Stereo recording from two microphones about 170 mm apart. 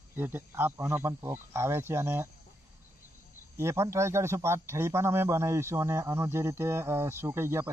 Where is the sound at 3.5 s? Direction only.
15° right (ahead or behind).